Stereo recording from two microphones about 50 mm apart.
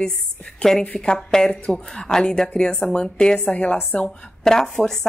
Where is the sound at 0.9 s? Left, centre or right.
Centre.